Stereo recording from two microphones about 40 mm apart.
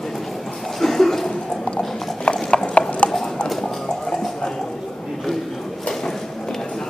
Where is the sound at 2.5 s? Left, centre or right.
Left.